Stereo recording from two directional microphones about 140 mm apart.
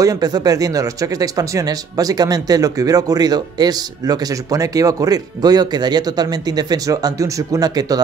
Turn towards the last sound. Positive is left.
turn(degrees=-25)  # may be behind; listen again after turning